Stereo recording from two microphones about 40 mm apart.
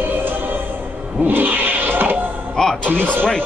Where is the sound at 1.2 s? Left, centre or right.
Right.